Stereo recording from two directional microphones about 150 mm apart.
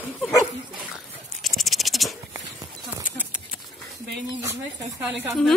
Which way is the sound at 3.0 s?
10° right (ahead or behind).